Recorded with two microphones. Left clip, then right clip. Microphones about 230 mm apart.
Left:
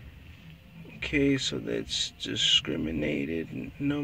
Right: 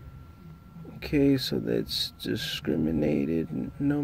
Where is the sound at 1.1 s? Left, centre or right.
Right.